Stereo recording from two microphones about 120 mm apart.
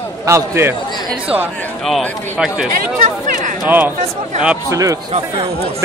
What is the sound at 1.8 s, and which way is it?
Speech, centre (ahead or behind).